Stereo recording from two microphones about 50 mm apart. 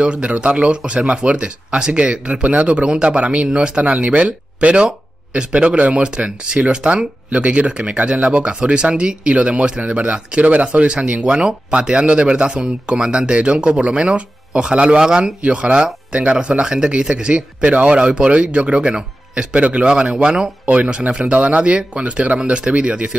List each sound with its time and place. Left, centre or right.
0.0 s speech: right